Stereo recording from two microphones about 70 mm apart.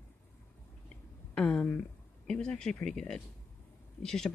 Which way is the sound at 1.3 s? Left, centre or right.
Centre.